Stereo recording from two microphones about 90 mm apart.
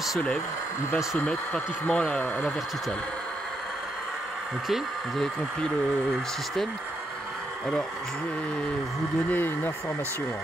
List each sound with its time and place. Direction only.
1.2 s speech: 10° left (ahead or behind)
4.6 s speech: centre (ahead or behind)
9.3 s speech: 20° left (ahead or behind)